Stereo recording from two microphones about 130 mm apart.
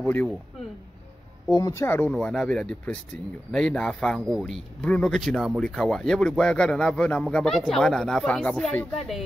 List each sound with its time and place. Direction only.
0.0 s speech: 10° left (ahead or behind)
1.5 s speech: 30° left (ahead or behind)
1.9 s speech: 15° left (ahead or behind)